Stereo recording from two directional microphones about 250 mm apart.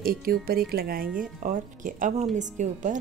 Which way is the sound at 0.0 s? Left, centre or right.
Right.